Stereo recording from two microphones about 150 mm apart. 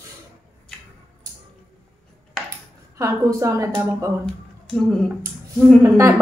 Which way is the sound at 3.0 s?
20° right (ahead or behind).